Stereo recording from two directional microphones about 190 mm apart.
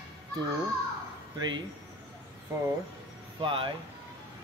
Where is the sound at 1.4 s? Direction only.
25° right (ahead or behind).